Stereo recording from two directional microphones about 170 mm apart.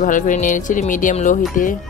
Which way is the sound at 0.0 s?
50° left (ahead or behind).